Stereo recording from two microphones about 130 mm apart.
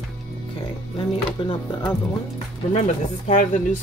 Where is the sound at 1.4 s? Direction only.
40° left (ahead or behind).